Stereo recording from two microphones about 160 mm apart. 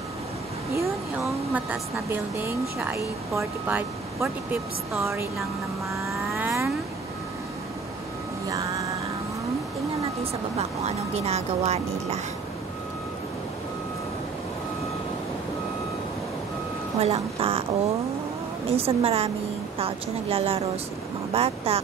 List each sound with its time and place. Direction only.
0.7 s speech: 15° right (ahead or behind)
6.3 s vehicle: 15° right (ahead or behind)
8.5 s music: 20° right (ahead or behind)
10.9 s speech: 40° right (ahead or behind)
17.0 s speech: 40° right (ahead or behind)